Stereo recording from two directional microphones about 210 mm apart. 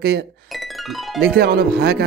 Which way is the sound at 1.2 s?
50° right (ahead or behind).